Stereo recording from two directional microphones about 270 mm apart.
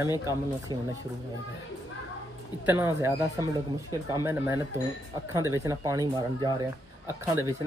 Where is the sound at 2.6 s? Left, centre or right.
Centre.